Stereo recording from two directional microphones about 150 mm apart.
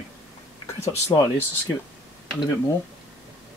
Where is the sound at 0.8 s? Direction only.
20° left (ahead or behind).